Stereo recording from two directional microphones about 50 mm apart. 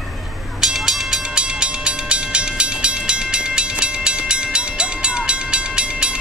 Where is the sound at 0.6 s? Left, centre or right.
Centre.